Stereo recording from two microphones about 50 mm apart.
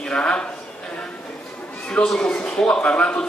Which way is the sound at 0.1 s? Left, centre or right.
Left.